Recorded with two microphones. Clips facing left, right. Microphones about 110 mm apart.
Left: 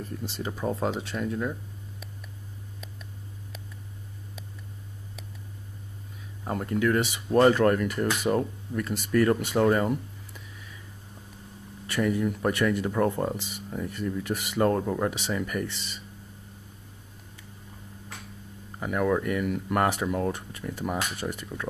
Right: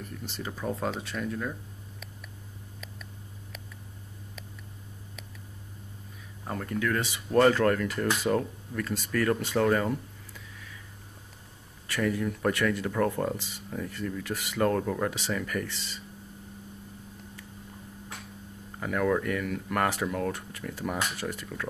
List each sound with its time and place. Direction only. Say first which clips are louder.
0.0 s speech: left 4 dB; 25° left (ahead or behind)
6.4 s speech: left 5 dB; 20° left (ahead or behind)
12.1 s speech: left 1 dB; 10° left (ahead or behind)
18.8 s speech: left 1 dB; 15° left (ahead or behind)